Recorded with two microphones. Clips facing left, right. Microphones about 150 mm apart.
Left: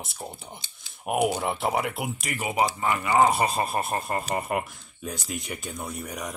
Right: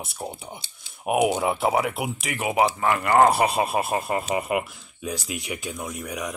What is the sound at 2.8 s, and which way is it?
Speech, 65° right (ahead or behind).